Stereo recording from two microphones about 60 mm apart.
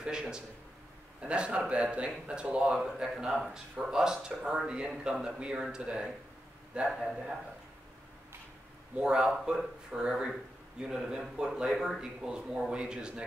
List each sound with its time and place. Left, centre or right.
0.0 s a man's voice: centre
8.9 s speech: centre